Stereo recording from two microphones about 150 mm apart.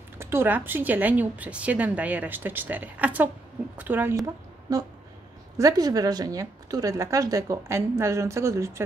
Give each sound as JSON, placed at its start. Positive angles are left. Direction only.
{"t": 0.2, "sound": "speech", "side_deg": -15}
{"t": 5.6, "sound": "a woman's voice", "side_deg": -25}